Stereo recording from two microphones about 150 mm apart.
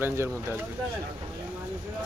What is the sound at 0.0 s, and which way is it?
Speech, 15° right (ahead or behind).